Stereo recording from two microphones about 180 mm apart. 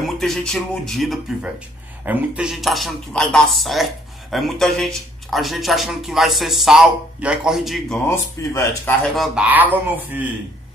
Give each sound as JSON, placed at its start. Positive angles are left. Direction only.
{"t": 0.0, "sound": "speech", "side_deg": 0}
{"t": 8.4, "sound": "speech", "side_deg": 15}
{"t": 9.0, "sound": "a man's voice", "side_deg": 0}